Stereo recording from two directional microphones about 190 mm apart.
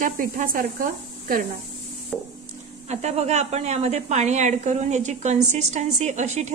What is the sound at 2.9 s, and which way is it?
A woman's voice, 35° right (ahead or behind).